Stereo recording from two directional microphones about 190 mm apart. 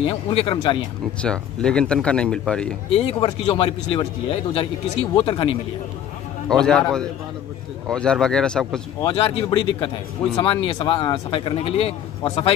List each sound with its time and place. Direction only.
0.0 s speech: 30° left (ahead or behind)
1.2 s speech: 5° left (ahead or behind)
2.9 s speech: 30° left (ahead or behind)
6.5 s speech: 5° left (ahead or behind)
9.0 s speech: 30° left (ahead or behind)